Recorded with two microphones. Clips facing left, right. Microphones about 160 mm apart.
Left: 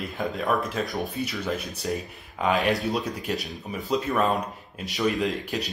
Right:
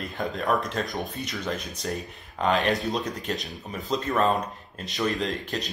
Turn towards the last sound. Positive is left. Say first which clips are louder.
# left 2 dB
turn(degrees=5)  # may be behind; listen again after turning